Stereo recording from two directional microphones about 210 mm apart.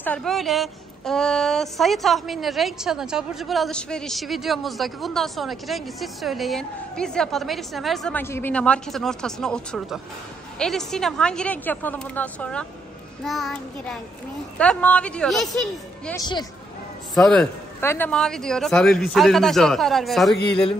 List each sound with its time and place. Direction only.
0.0 s a woman's voice: 5° left (ahead or behind)
16.2 s speech: 20° left (ahead or behind)
17.1 s a woman's voice: centre (ahead or behind)